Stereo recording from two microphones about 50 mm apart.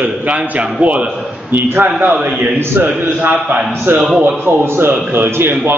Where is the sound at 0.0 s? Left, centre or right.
Right.